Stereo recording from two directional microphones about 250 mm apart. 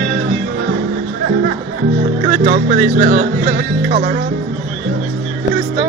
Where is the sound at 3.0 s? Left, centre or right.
Right.